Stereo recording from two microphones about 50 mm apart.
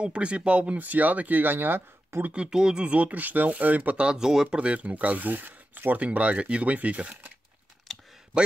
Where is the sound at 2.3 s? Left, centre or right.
Centre; by 4.0 s right.